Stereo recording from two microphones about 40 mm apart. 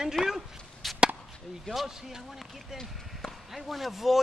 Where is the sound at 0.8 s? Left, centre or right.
Centre.